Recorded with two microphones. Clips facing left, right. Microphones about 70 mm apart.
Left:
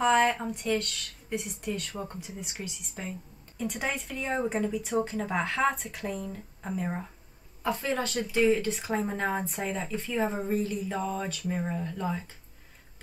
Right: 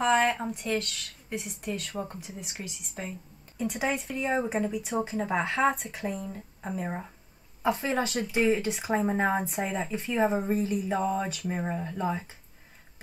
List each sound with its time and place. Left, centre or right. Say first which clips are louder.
0.0 s a woman's voice: left 1 dB; centre